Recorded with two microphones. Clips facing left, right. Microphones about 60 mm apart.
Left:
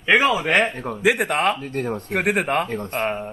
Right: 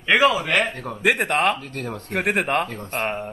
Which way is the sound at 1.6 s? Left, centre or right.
Left.